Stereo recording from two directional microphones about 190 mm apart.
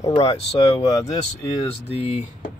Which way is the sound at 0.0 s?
30° left (ahead or behind).